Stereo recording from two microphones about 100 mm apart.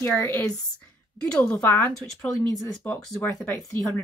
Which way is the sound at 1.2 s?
10° left (ahead or behind).